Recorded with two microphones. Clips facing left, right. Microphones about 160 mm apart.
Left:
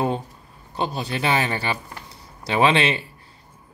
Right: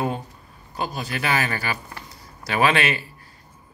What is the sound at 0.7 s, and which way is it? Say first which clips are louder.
Speech: left 3 dB; 30° left (ahead or behind).